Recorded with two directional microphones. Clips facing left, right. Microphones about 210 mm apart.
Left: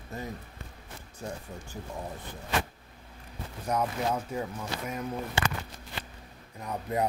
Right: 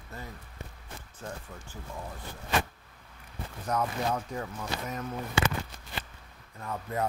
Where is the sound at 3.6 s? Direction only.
10° left (ahead or behind).